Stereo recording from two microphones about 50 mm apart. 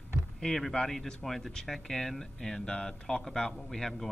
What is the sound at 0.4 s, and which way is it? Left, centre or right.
Speech, centre.